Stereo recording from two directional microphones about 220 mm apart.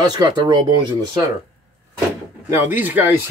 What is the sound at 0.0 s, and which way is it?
Speech, 20° right (ahead or behind).